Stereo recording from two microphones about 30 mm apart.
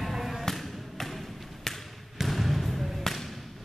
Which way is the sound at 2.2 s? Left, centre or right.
Centre.